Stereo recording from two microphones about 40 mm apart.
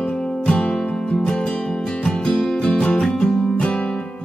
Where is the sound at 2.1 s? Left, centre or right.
Centre.